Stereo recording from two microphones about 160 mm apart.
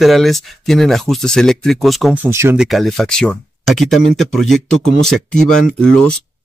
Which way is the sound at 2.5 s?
Centre (ahead or behind).